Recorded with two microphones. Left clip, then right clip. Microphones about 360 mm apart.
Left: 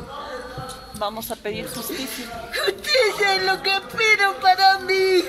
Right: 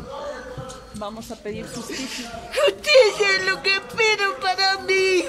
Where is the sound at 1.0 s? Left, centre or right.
Left.